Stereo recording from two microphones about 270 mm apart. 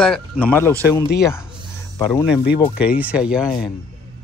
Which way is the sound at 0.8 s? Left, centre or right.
Centre.